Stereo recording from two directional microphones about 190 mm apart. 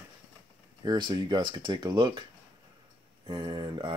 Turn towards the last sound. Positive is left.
turn(degrees=-25)  # may be behind; listen again after turning